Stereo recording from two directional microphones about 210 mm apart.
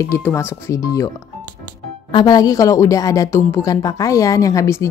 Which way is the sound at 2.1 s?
20° left (ahead or behind).